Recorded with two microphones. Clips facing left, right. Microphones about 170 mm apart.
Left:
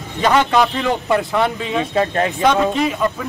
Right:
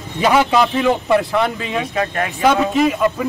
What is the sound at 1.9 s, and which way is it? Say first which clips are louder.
Speech: left 5 dB; 30° left (ahead or behind).